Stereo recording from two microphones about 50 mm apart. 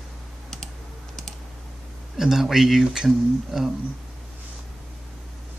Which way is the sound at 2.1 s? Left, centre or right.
Centre.